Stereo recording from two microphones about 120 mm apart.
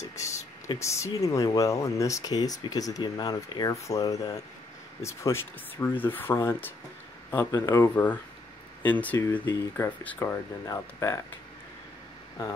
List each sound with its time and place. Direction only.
0.7 s speech: 25° left (ahead or behind)